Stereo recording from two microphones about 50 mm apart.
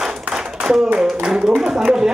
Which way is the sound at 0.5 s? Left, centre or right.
Centre.